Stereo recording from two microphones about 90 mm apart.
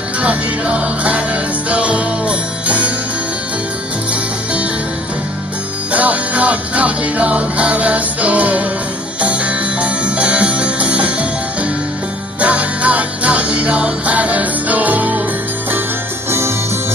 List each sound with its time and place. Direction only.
0.2 s music: 15° right (ahead or behind)
5.9 s music: 15° right (ahead or behind)
12.4 s music: 15° right (ahead or behind)
16.3 s music: 30° right (ahead or behind)